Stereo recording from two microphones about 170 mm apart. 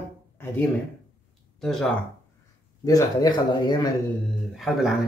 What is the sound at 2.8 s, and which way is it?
Speech, 20° left (ahead or behind).